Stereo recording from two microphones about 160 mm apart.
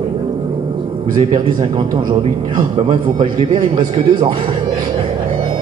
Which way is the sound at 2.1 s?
30° right (ahead or behind).